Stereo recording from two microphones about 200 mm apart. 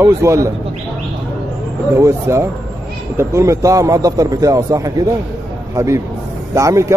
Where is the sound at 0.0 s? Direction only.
15° right (ahead or behind).